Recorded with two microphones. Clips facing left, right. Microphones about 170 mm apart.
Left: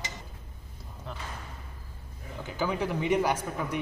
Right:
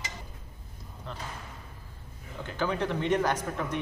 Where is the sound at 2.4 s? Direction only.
10° left (ahead or behind).